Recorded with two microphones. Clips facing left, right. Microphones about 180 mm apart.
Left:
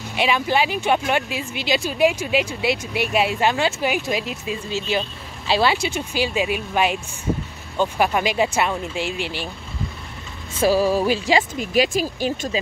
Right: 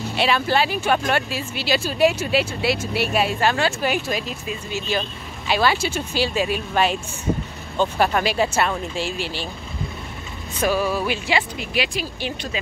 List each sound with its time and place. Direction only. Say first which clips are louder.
0.1 s speech: even; 15° left (ahead or behind)
10.6 s speech: left 4 dB; 35° left (ahead or behind)